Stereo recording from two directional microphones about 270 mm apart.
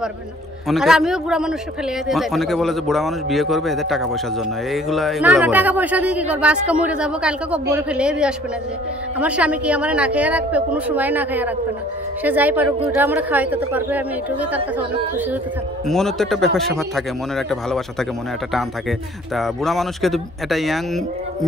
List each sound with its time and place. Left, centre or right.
0.7 s speech: centre
15.9 s speech: centre